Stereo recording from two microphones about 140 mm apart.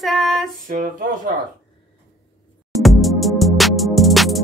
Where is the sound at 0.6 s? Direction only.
70° right (ahead or behind).